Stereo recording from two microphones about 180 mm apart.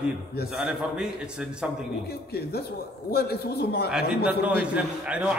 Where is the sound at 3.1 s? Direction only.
60° left (ahead or behind).